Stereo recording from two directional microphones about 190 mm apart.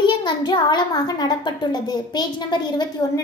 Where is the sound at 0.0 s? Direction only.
25° left (ahead or behind).